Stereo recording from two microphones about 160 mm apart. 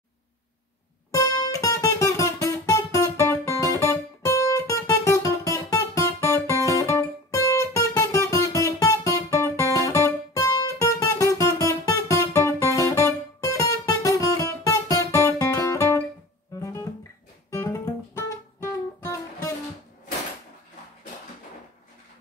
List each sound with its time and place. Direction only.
1.1 s guitar: 20° left (ahead or behind)
18.9 s music: 20° left (ahead or behind)